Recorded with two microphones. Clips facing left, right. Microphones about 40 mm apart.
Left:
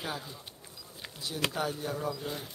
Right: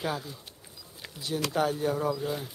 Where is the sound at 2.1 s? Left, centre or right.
Centre.